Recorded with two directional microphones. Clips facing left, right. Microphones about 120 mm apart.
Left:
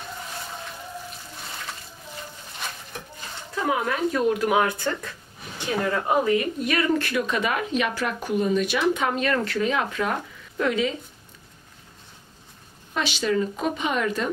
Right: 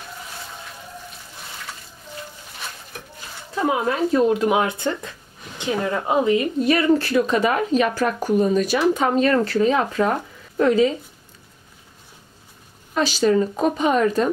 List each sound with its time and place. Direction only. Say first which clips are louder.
3.5 s speech: right 4 dB; 25° right (ahead or behind)
12.9 s speech: right 6 dB; 40° right (ahead or behind)